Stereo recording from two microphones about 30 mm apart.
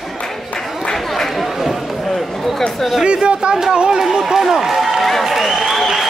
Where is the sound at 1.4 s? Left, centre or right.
Centre.